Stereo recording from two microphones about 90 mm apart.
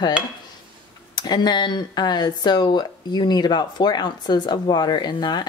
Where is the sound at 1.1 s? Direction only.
50° left (ahead or behind).